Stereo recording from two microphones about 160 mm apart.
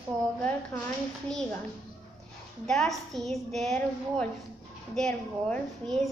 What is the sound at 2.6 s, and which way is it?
A woman's voice, 5° left (ahead or behind).